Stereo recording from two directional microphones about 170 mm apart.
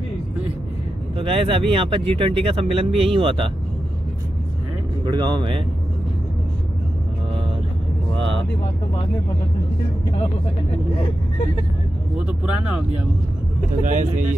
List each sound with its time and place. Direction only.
1.1 s speech: 30° right (ahead or behind)
5.0 s speech: 25° right (ahead or behind)
8.2 s vehicle: 90° right
12.3 s speech: 5° right (ahead or behind)
13.8 s speech: 50° right (ahead or behind)